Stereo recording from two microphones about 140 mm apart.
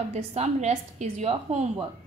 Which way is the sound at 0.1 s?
50° right (ahead or behind).